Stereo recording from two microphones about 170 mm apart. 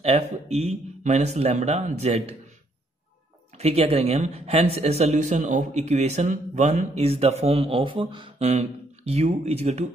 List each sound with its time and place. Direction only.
0.0 s speech: 40° right (ahead or behind)
3.5 s speech: 35° right (ahead or behind)